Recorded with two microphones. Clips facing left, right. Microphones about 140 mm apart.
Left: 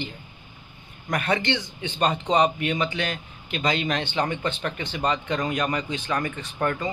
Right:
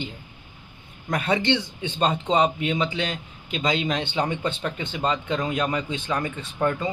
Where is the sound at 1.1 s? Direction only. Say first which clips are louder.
Right 2 dB; 5° right (ahead or behind).